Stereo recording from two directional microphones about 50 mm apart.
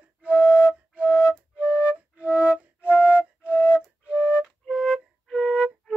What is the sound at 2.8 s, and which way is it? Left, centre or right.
Flute, left.